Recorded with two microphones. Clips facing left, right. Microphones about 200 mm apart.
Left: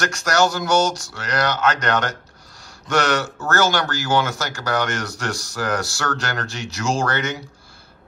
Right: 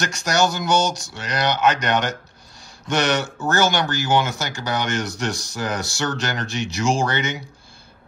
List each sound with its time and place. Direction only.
0.0 s speech: 20° right (ahead or behind)